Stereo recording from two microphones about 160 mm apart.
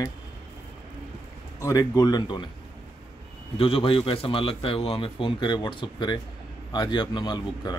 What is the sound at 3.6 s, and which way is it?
A man's voice, 35° left (ahead or behind).